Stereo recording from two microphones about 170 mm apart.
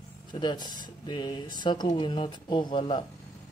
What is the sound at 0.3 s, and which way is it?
Speech, 25° left (ahead or behind).